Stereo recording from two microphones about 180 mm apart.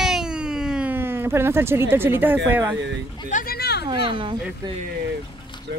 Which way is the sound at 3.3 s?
45° left (ahead or behind).